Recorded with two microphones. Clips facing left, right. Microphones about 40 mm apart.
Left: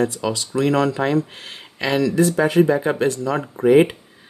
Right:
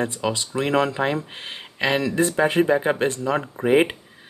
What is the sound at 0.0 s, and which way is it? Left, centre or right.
Speech, right.